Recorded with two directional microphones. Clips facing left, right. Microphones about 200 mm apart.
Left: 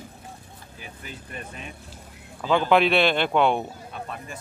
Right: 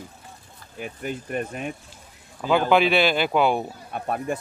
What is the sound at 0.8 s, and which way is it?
Speech, 55° right (ahead or behind).